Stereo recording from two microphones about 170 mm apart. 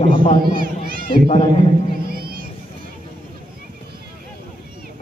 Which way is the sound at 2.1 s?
60° right (ahead or behind).